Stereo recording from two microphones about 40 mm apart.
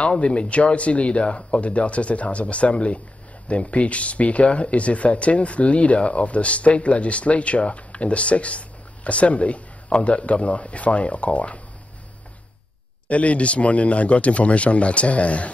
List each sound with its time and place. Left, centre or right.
0.0 s speech: left
13.1 s speech: left